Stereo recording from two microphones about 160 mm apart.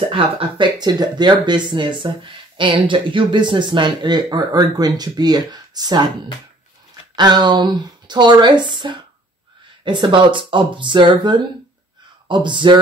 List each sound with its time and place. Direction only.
0.1 s speech: 30° right (ahead or behind)
7.2 s speech: 25° right (ahead or behind)